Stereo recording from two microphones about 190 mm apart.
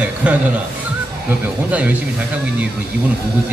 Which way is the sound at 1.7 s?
5° right (ahead or behind).